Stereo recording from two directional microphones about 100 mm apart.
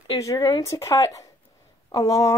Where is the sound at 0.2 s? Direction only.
35° left (ahead or behind).